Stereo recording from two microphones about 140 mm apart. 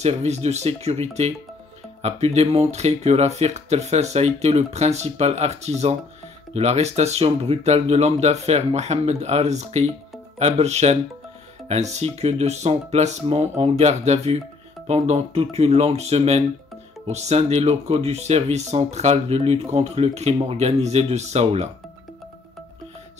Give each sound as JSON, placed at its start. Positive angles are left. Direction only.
{"t": 0.0, "sound": "speech", "side_deg": -50}